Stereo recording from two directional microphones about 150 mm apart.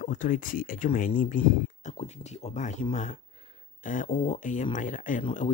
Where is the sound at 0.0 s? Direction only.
60° left (ahead or behind).